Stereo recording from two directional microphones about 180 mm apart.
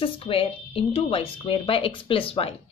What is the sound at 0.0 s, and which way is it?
A woman's voice, 30° left (ahead or behind).